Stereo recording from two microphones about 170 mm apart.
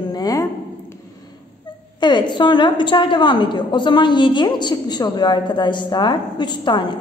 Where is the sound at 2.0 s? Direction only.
25° left (ahead or behind).